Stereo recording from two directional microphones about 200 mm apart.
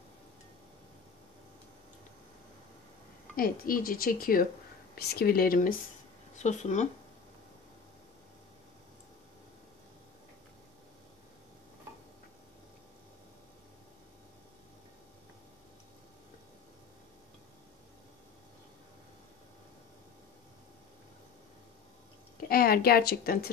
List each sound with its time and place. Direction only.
3.3 s speech: 45° left (ahead or behind)
22.5 s a woman's voice: 50° left (ahead or behind)